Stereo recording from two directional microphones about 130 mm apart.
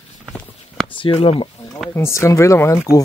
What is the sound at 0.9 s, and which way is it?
Speech, 45° left (ahead or behind).